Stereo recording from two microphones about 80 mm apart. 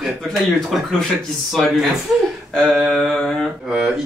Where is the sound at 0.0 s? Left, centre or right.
Centre.